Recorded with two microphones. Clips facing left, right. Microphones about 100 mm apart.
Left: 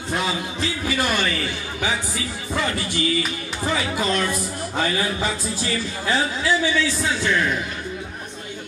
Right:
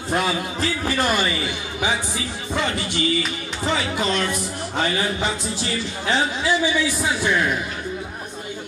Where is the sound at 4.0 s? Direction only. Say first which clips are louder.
Even; 25° right (ahead or behind).